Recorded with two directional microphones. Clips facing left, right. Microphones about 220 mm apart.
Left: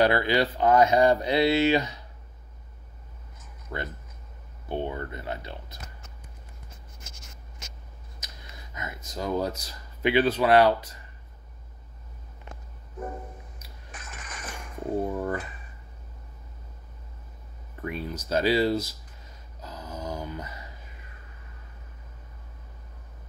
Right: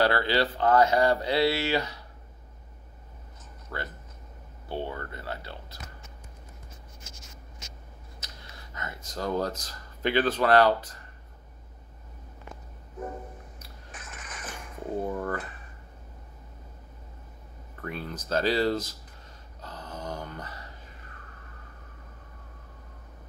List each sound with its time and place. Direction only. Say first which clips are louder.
0.0 s speech: left 2 dB; 15° left (ahead or behind)
3.7 s speech: left 3 dB; 20° left (ahead or behind)
8.7 s speech: left 1 dB; 10° left (ahead or behind)
13.9 s music: left 1 dB; 5° right (ahead or behind)
15.1 s speech: left 2 dB; 10° left (ahead or behind)
17.7 s speech: left 3 dB; 15° left (ahead or behind)
19.6 s a sound: left 2 dB; 10° left (ahead or behind)